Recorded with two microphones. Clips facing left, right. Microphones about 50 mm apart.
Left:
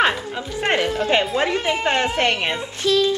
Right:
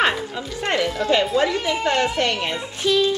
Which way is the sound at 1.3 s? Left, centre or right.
Left.